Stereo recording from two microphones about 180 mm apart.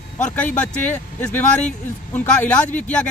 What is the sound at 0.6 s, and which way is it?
Speech, 10° left (ahead or behind).